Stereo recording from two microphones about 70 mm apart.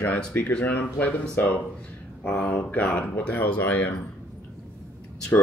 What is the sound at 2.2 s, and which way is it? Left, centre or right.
Speech, centre.